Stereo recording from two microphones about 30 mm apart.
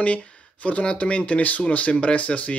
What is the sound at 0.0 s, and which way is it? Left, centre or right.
Speech, left.